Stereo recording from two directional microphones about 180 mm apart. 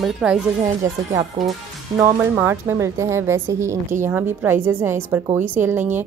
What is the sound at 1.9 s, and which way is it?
A woman's voice, 15° right (ahead or behind).